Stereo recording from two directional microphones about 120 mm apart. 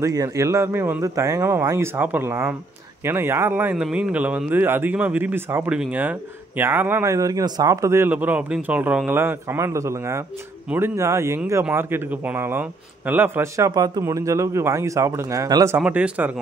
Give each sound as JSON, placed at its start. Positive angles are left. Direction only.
{"t": 0.0, "sound": "a man's voice", "side_deg": -25}
{"t": 2.0, "sound": "a man's voice", "side_deg": -15}
{"t": 3.7, "sound": "a man's voice", "side_deg": -10}
{"t": 8.1, "sound": "a man's voice", "side_deg": -15}
{"t": 15.8, "sound": "a man's voice", "side_deg": -10}